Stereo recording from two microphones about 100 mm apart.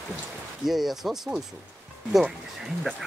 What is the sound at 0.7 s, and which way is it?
Speech, centre (ahead or behind).